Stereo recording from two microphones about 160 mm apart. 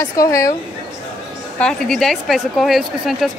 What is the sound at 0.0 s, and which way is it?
Speech, 20° left (ahead or behind).